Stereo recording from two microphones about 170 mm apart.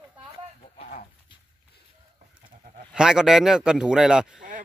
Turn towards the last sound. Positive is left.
turn(degrees=-5)  # may be behind; listen again after turning